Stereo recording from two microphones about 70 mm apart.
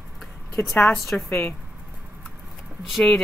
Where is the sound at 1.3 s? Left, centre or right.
Left.